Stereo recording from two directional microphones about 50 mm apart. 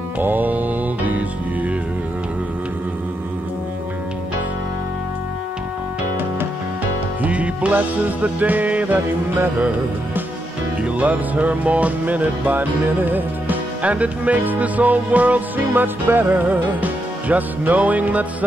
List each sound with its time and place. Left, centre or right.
0.2 s music: right
7.2 s music: right
8.9 s music: right
10.8 s music: right
13.8 s music: right